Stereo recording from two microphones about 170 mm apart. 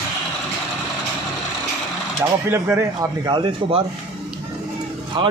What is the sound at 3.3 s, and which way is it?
Speech, 30° right (ahead or behind).